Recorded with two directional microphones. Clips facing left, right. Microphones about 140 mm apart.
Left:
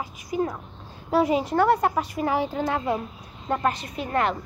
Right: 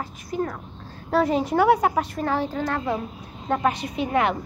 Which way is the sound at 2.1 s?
15° left (ahead or behind).